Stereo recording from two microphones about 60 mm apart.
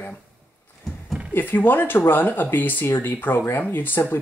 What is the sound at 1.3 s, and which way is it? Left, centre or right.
Speech, left.